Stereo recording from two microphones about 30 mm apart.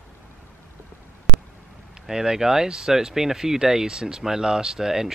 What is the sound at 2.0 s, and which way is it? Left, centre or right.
Speech, centre.